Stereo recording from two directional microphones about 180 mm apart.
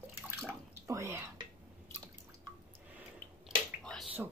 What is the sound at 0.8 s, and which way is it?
Whispering, 15° right (ahead or behind).